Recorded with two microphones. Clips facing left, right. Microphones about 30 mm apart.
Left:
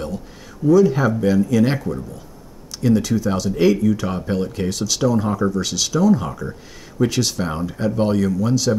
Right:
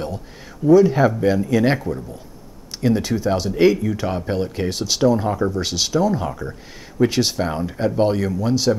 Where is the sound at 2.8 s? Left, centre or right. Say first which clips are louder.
Left 1 dB; centre.